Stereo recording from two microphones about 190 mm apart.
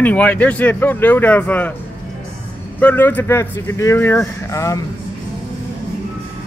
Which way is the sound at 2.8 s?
10° left (ahead or behind).